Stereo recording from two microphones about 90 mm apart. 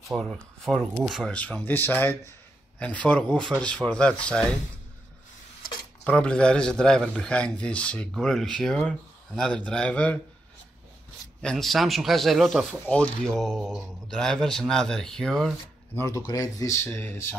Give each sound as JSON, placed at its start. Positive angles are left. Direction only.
{"t": 0.1, "sound": "speech", "side_deg": -5}
{"t": 1.3, "sound": "a man's voice", "side_deg": 15}
{"t": 6.0, "sound": "a man's voice", "side_deg": 10}
{"t": 11.5, "sound": "speech", "side_deg": 0}
{"t": 12.8, "sound": "speech", "side_deg": 15}
{"t": 16.3, "sound": "speech", "side_deg": 45}
{"t": 16.8, "sound": "speech", "side_deg": 25}